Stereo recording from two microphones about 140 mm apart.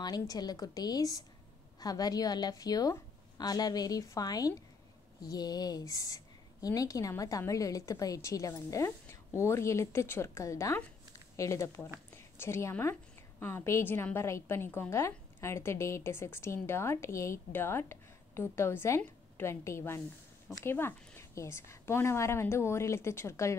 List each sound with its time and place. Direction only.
0.0 s a woman's voice: 30° left (ahead or behind)
12.1 s a sound: 20° left (ahead or behind)
13.4 s a woman's voice: 15° left (ahead or behind)